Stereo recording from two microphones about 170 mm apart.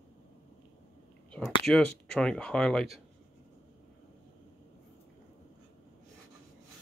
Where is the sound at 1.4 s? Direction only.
5° left (ahead or behind).